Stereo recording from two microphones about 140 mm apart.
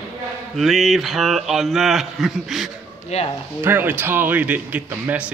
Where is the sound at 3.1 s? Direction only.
50° left (ahead or behind).